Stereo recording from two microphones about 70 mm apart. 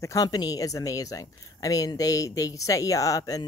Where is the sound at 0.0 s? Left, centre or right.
Left.